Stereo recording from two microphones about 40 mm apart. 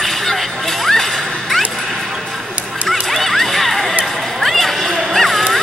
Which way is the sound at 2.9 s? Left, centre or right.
Centre.